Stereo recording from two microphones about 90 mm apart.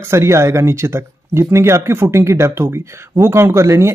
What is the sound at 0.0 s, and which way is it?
Speech, 30° right (ahead or behind).